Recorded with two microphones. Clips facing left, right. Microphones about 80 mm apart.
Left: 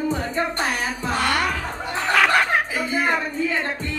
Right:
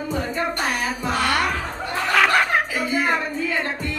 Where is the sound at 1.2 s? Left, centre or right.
Centre.